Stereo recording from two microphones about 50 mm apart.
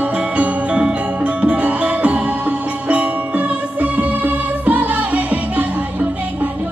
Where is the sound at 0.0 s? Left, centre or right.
Right.